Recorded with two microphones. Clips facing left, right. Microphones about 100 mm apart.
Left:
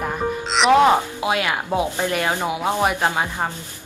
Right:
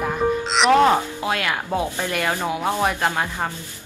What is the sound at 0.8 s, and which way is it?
Speech, 15° left (ahead or behind).